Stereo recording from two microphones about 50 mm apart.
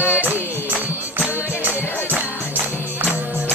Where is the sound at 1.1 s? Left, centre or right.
Right.